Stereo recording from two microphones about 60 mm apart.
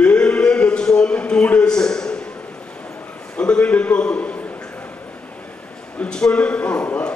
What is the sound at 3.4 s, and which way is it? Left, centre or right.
Speech, centre.